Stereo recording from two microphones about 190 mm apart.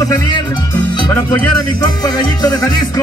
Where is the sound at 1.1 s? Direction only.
15° left (ahead or behind).